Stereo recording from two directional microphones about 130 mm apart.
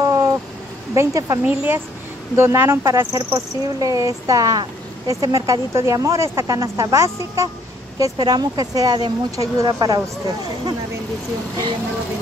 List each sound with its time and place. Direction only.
0.0 s a sound: 25° right (ahead or behind)
0.9 s speech: 25° right (ahead or behind)
1.4 s speech: 15° right (ahead or behind); by 10.0 s 30° right (ahead or behind)